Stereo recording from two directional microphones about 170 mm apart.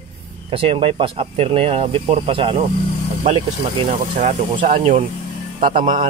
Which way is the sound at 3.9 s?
45° right (ahead or behind).